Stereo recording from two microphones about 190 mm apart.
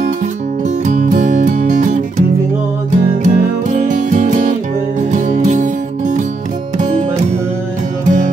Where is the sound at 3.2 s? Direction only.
40° right (ahead or behind).